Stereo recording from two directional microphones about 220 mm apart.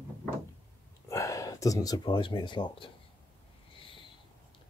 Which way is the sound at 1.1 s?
15° left (ahead or behind).